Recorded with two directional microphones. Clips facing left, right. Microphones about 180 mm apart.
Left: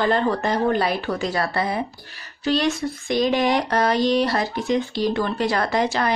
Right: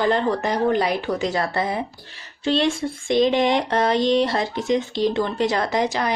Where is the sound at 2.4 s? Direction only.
25° right (ahead or behind).